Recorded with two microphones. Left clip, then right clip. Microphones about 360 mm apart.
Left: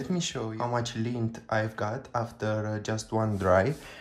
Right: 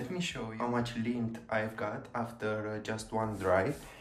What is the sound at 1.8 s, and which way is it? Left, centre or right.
Speech, centre.